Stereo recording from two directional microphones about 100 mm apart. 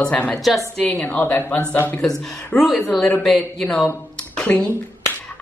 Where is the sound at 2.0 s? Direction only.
5° left (ahead or behind).